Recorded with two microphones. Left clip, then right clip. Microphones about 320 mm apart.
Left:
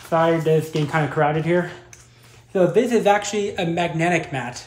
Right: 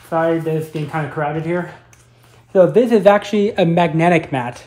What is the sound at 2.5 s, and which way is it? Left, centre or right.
Speech, centre.